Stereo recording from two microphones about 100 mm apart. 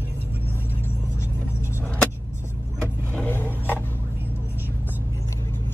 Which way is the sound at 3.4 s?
20° left (ahead or behind).